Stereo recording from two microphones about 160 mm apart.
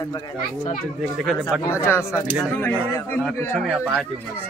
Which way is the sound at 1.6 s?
15° left (ahead or behind).